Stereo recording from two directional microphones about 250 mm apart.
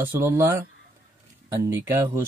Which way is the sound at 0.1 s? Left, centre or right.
Centre.